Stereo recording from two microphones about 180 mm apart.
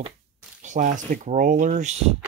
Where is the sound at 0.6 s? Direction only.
45° right (ahead or behind).